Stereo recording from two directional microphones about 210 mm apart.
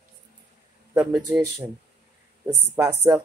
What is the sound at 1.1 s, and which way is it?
Speech, 20° right (ahead or behind).